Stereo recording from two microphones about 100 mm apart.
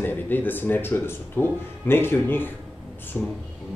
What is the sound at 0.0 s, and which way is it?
Speech, 20° left (ahead or behind).